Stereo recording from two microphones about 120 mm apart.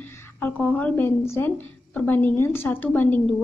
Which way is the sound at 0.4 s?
15° left (ahead or behind).